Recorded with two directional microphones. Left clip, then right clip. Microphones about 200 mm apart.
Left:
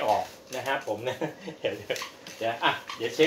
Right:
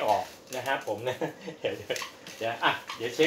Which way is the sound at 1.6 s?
10° right (ahead or behind).